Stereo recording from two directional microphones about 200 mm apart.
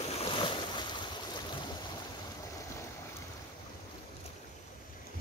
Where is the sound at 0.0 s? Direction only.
30° left (ahead or behind).